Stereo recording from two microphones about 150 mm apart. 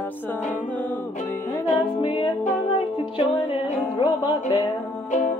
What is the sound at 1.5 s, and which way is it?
Music, 25° left (ahead or behind).